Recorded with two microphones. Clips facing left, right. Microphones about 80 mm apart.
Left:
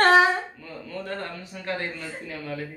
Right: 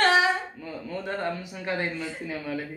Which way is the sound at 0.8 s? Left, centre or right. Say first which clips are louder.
Right 3 dB; centre.